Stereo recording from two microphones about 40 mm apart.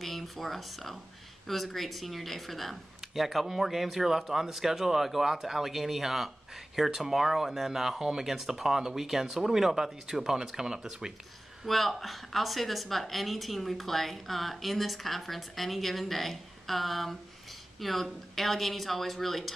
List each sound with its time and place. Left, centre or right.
0.0 s a woman's voice: centre
11.6 s a woman's voice: centre